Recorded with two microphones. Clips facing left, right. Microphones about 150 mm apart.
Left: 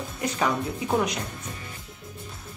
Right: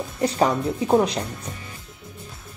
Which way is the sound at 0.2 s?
30° right (ahead or behind).